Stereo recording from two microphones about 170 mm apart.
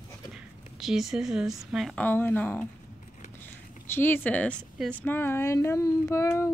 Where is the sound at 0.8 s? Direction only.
Centre (ahead or behind).